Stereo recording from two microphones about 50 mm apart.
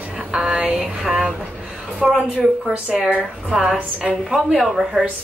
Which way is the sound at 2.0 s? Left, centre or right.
Centre.